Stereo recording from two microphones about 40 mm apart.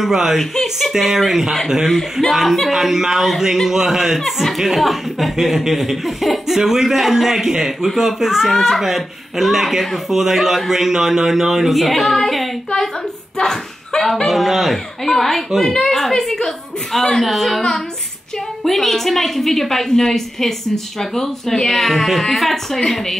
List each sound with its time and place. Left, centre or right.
0.0 s speech: centre
0.4 s speech: centre
2.7 s a woman's voice: centre
13.4 s slap: centre
14.0 s a woman's voice: centre
15.0 s a woman's voice: centre